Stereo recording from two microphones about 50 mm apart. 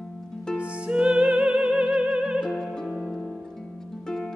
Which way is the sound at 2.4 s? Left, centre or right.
Centre.